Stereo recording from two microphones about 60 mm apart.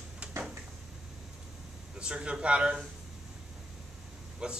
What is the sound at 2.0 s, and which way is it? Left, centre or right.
Speech, centre.